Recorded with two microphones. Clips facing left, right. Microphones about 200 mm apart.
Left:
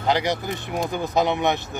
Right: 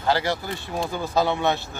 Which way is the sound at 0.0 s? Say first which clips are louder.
Left 1 dB; 20° left (ahead or behind).